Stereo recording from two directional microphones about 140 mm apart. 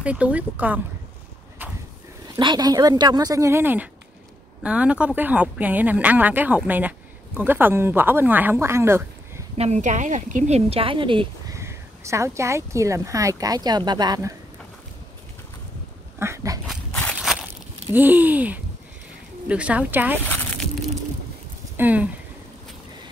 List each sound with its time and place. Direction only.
0.0 s speech: 10° right (ahead or behind)
1.6 s a sound: 15° right (ahead or behind)
2.3 s speech: 30° right (ahead or behind)
9.6 s speech: 55° right (ahead or behind); by 11.5 s 35° right (ahead or behind)
11.5 s speech: 20° right (ahead or behind)
16.2 s speech: 20° right (ahead or behind)
16.6 s a sound: 5° left (ahead or behind)
17.2 s crushing: 5° right (ahead or behind)
17.9 s speech: 15° right (ahead or behind)
20.2 s a sound: 15° left (ahead or behind)
21.7 s speech: 10° right (ahead or behind)